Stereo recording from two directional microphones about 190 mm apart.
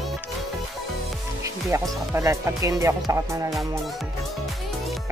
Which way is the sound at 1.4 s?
15° right (ahead or behind).